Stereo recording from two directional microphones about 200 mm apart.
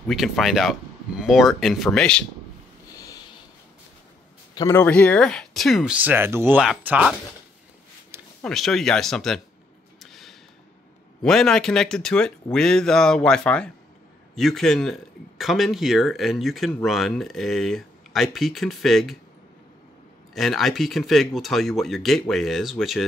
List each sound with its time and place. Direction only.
0.1 s a man's voice: centre (ahead or behind)
2.9 s a sound: 15° left (ahead or behind)
4.6 s a man's voice: 15° left (ahead or behind); by 7.2 s 5° right (ahead or behind)
8.4 s a man's voice: centre (ahead or behind)
9.9 s a sound: centre (ahead or behind)
11.2 s a man's voice: centre (ahead or behind)
20.3 s a man's voice: centre (ahead or behind)